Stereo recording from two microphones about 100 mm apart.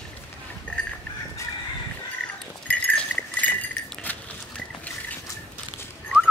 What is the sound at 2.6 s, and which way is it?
Goat, 15° left (ahead or behind).